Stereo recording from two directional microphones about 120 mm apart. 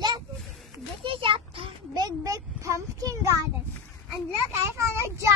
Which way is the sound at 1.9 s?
30° right (ahead or behind).